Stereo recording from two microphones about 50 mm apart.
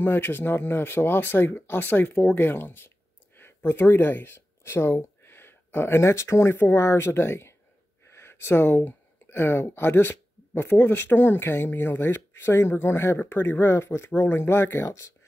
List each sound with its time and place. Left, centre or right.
0.0 s speech: left
5.2 s a sound: left
6.5 s speech: left
6.8 s speech: left
14.9 s speech: left